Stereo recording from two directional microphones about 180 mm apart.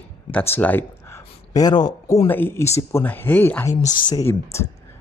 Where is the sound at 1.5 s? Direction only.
20° left (ahead or behind).